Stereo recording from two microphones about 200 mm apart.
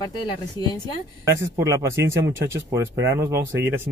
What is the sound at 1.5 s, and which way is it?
Speech, 15° right (ahead or behind).